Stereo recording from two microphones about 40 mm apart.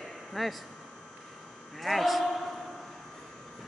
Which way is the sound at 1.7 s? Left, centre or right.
Centre.